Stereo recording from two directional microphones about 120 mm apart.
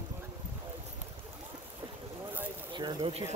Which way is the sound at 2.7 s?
40° right (ahead or behind).